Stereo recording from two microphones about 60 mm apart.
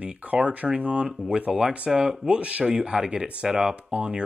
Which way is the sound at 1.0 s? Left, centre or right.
Centre.